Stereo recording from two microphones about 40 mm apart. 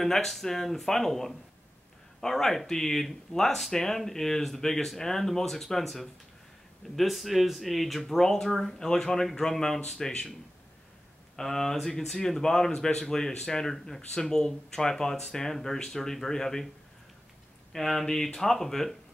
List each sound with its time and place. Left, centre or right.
0.0 s speech: centre
11.3 s speech: centre
17.7 s speech: centre